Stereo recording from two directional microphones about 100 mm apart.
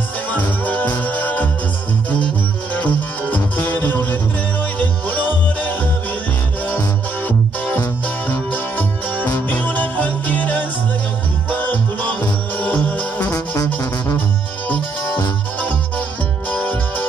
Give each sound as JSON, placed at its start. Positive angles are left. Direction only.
{"t": 0.3, "sound": "music", "side_deg": 15}
{"t": 2.7, "sound": "music", "side_deg": 15}
{"t": 7.2, "sound": "music", "side_deg": 15}
{"t": 13.6, "sound": "music", "side_deg": 35}
{"t": 16.4, "sound": "music", "side_deg": 15}